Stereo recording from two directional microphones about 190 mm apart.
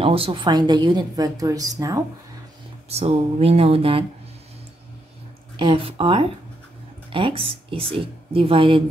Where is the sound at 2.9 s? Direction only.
35° right (ahead or behind).